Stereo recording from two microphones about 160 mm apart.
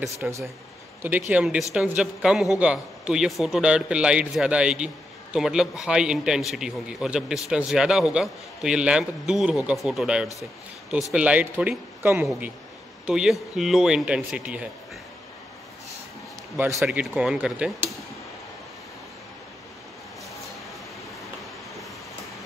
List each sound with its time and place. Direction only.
0.2 s speech: 20° right (ahead or behind)
1.3 s a man's voice: 5° right (ahead or behind)
16.8 s a man's voice: 10° right (ahead or behind)